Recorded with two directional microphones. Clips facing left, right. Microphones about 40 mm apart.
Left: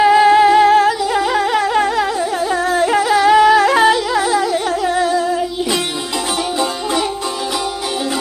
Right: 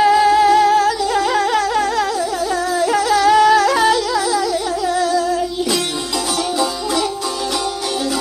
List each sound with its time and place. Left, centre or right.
0.0 s music: left
1.1 s music: centre
2.5 s music: left